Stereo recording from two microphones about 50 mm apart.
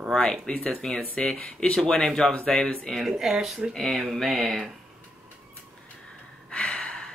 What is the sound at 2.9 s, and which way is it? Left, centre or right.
Mantra, centre.